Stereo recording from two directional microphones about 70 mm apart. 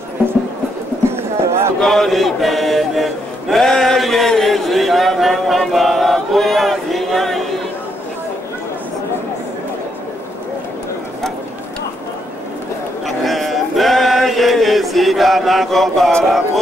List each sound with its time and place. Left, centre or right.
1.1 s a sound: right
1.8 s chant: centre
13.0 s male singing: centre